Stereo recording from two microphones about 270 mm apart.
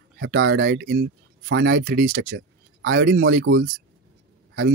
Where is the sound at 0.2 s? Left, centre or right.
Right.